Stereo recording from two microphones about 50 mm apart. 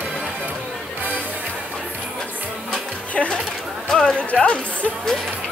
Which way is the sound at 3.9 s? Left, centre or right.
Centre.